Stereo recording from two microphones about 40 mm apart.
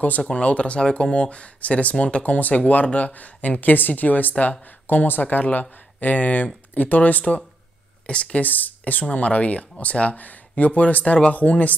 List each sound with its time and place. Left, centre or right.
0.4 s speech: left
4.8 s speech: left
8.1 s speech: left
8.4 s speech: left
9.1 s speech: left